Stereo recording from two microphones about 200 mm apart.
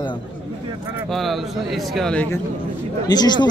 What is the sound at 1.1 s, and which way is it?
A man's voice, centre (ahead or behind).